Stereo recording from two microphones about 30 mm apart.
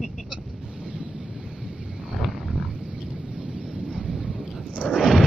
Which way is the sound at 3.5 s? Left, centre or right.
Right.